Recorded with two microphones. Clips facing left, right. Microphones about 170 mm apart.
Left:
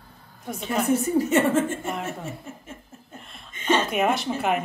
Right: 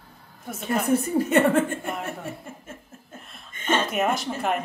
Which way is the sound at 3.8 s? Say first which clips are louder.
Left 1 dB; centre (ahead or behind).